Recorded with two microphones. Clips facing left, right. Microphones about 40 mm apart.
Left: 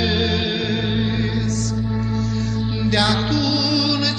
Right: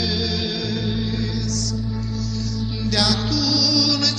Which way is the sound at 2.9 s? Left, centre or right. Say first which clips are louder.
Left 2 dB; left.